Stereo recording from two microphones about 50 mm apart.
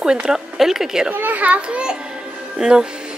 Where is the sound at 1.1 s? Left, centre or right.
Right.